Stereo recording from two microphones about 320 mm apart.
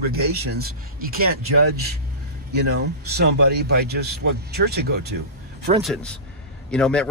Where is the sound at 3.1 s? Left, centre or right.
Right.